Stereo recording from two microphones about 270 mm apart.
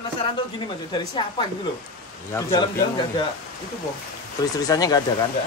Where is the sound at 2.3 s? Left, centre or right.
Centre.